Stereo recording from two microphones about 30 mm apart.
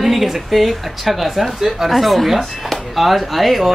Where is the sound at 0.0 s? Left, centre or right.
Centre.